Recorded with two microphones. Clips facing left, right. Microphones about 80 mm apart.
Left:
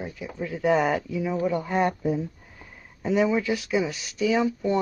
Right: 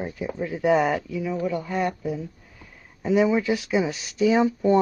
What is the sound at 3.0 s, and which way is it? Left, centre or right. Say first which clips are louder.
Speech: right 2 dB; centre.